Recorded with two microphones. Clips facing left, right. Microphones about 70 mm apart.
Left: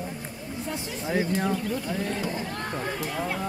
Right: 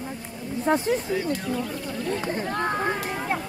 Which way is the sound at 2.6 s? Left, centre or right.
Right.